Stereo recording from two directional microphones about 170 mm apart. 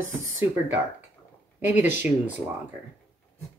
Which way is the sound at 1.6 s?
10° right (ahead or behind).